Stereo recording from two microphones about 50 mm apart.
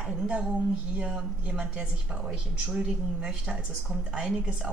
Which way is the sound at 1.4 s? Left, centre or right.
Right.